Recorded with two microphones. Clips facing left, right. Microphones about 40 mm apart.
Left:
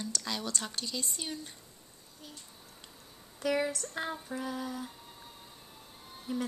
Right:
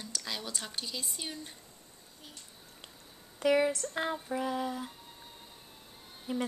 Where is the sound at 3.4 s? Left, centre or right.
Right.